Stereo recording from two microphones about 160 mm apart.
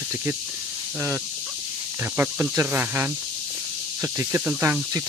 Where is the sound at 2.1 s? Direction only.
10° right (ahead or behind).